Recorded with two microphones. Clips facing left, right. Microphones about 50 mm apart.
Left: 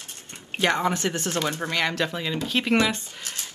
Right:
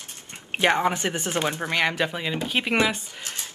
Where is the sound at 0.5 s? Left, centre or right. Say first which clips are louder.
Right 2 dB; right.